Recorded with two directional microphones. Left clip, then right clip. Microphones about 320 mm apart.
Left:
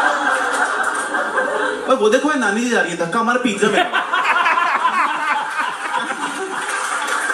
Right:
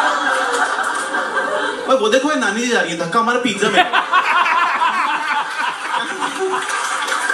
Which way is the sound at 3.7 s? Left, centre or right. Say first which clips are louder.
Right 3 dB; centre.